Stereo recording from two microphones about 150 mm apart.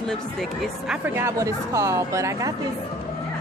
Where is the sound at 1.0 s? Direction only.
20° right (ahead or behind).